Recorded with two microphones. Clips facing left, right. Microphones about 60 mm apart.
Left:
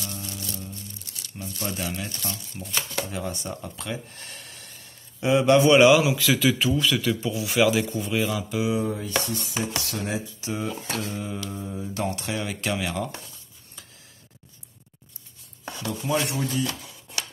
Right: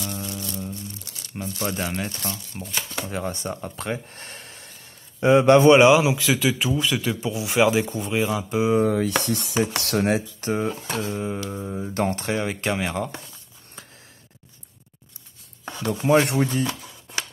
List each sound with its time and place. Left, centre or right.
0.0 s music: right
1.3 s speech: right
2.3 s speech: centre
3.1 s speech: right
8.7 s speech: right
10.7 s speech: right
16.0 s speech: right